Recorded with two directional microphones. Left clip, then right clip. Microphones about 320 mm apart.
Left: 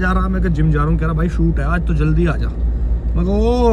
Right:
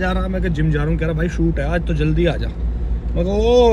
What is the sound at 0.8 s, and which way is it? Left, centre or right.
Speech, right.